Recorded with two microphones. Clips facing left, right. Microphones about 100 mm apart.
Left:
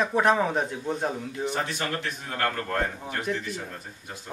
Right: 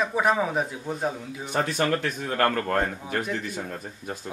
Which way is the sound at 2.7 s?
50° right (ahead or behind).